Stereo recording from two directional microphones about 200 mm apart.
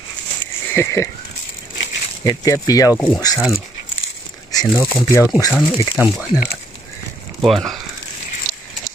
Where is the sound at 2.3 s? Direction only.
15° left (ahead or behind).